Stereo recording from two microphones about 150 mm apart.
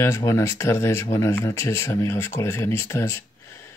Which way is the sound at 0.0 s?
20° left (ahead or behind).